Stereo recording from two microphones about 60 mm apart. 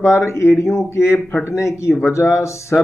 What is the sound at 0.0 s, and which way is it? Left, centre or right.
Speech, left.